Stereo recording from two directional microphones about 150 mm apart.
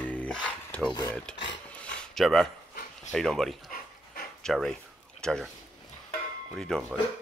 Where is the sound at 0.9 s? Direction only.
25° left (ahead or behind).